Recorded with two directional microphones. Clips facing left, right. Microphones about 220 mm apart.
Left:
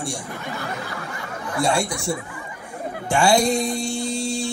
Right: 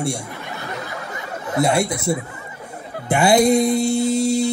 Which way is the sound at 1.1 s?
20° right (ahead or behind).